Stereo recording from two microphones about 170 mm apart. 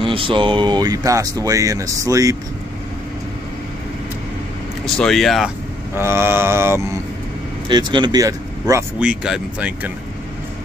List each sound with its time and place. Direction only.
0.0 s speech: 30° right (ahead or behind)
4.9 s speech: centre (ahead or behind)
5.9 s speech: 15° right (ahead or behind)
7.6 s speech: 25° right (ahead or behind)
9.0 s speech: 5° right (ahead or behind)